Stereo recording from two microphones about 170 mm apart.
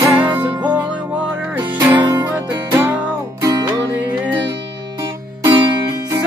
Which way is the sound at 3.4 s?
20° right (ahead or behind).